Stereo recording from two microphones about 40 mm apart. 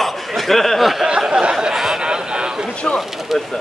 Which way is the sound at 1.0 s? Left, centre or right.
Centre.